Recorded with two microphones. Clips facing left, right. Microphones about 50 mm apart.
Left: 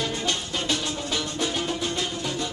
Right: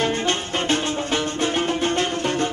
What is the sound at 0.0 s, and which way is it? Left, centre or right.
Music, right.